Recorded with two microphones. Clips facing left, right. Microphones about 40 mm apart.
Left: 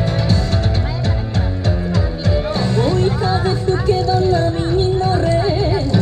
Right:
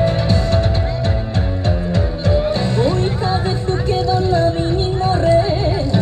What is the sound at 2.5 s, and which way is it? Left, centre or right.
Music, right.